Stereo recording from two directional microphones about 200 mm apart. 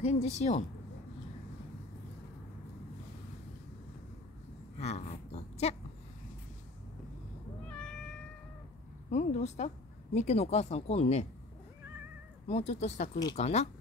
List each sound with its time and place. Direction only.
0.0 s speech: 35° left (ahead or behind)
4.7 s speech: 35° left (ahead or behind)
7.7 s cat: 5° left (ahead or behind)
9.1 s speech: 35° left (ahead or behind)
12.4 s speech: 30° left (ahead or behind)